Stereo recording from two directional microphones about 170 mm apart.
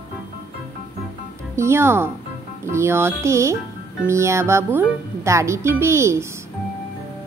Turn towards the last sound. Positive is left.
turn(degrees=-15)  # may be behind; listen again after turning